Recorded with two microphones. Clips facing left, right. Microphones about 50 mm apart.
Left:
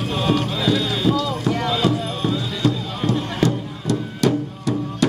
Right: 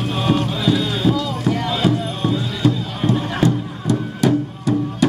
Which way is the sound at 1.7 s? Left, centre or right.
Centre.